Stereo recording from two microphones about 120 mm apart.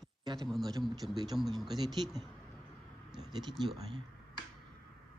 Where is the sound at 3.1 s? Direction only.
5° right (ahead or behind).